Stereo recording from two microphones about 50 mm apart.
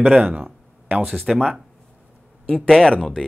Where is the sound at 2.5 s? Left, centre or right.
Centre.